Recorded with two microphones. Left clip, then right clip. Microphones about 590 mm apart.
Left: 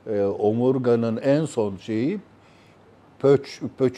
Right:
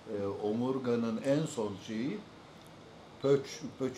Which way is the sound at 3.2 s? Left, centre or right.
Left.